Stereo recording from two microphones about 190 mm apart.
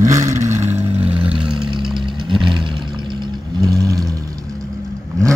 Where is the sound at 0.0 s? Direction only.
15° right (ahead or behind).